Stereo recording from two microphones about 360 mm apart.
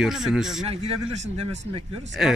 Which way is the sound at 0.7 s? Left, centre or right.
Centre.